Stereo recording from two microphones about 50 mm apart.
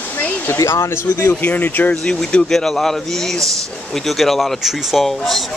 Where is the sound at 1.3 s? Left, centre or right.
Left.